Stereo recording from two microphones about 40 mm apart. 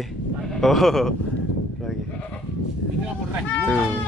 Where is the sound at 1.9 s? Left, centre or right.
Centre.